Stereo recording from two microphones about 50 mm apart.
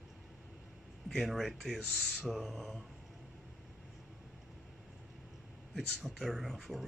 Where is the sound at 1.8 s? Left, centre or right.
Centre.